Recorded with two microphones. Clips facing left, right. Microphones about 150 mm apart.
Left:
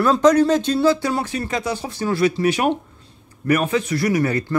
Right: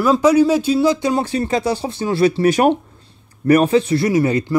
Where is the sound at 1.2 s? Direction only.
30° right (ahead or behind).